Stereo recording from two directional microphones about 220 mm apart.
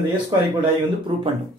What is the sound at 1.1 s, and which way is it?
Speech, 25° right (ahead or behind).